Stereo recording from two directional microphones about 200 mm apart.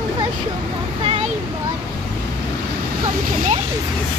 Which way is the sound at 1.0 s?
25° right (ahead or behind).